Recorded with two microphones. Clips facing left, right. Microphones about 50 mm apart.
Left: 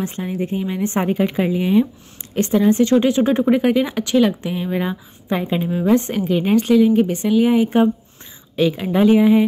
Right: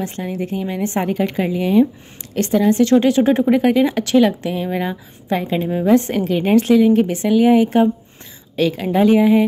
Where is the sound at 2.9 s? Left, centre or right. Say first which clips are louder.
Right 2 dB; centre.